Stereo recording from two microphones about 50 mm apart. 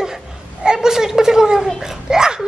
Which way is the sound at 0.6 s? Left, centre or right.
Centre.